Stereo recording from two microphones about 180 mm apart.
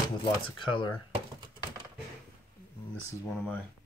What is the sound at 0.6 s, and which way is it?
Speech, 25° left (ahead or behind).